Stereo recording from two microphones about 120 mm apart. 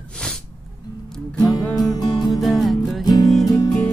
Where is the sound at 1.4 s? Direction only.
30° left (ahead or behind).